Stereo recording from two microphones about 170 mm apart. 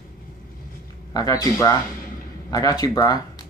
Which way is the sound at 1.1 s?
20° left (ahead or behind).